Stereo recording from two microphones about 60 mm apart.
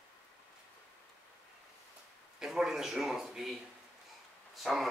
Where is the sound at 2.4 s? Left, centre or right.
Centre.